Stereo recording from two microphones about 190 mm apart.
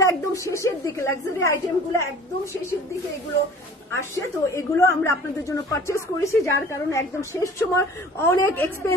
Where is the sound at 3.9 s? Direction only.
15° left (ahead or behind).